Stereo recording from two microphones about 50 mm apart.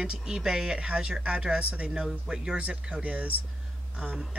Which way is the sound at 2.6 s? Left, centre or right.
Right.